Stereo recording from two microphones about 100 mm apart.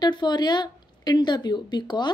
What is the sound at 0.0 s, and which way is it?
Speech, 45° left (ahead or behind).